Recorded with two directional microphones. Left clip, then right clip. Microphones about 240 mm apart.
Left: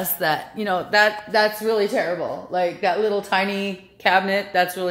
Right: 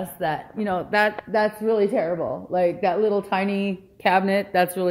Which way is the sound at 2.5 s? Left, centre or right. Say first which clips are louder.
Even; right.